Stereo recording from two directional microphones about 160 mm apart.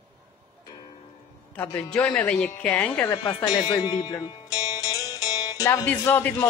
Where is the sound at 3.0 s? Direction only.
25° left (ahead or behind).